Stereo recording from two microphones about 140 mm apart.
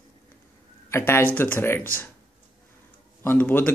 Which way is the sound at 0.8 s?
20° left (ahead or behind).